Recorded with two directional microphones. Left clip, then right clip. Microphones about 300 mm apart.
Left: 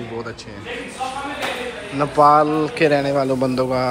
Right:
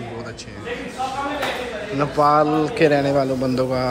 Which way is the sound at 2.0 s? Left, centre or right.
Centre.